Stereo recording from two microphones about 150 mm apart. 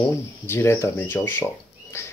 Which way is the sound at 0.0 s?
15° left (ahead or behind).